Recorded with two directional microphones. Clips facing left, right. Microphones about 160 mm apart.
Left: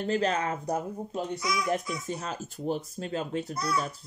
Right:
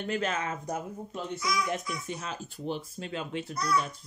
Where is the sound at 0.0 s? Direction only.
35° left (ahead or behind).